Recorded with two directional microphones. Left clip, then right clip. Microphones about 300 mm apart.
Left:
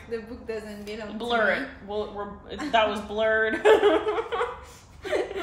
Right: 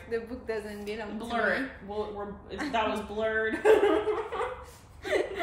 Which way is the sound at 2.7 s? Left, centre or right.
Centre.